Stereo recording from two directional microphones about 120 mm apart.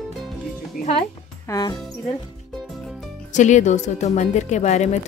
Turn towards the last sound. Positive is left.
turn(degrees=70)  # may be behind; listen again after turning